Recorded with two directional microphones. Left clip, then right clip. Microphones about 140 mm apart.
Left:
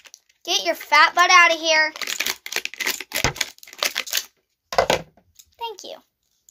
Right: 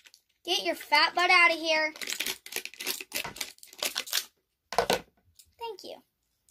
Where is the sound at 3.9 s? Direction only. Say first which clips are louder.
Left 3 dB; 40° left (ahead or behind).